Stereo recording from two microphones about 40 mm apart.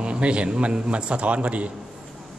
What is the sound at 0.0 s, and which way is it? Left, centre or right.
A man's voice, right.